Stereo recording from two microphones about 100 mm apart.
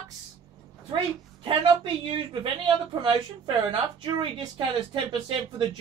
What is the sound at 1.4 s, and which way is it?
A woman's voice, 60° right (ahead or behind).